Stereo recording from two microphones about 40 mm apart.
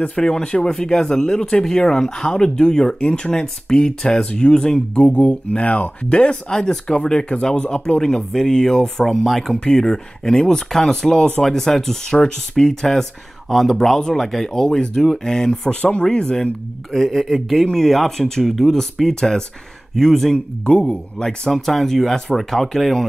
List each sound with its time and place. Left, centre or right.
0.1 s speech: centre
4.9 s speech: left
6.5 s speech: centre
15.7 s speech: left
16.9 s speech: centre
20.6 s speech: left
21.5 s speech: centre